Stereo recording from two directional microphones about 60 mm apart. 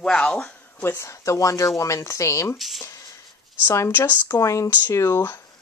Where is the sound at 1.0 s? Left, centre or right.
Left.